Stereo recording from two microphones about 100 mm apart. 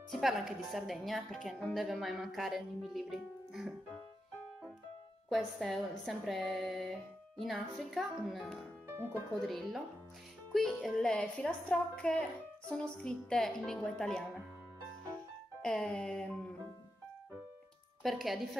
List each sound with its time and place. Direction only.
0.1 s a woman's voice: 5° right (ahead or behind)
5.3 s a woman's voice: centre (ahead or behind)
8.8 s music: 25° right (ahead or behind)
9.5 s a woman's voice: centre (ahead or behind)
15.6 s music: 10° left (ahead or behind)
18.0 s a woman's voice: centre (ahead or behind)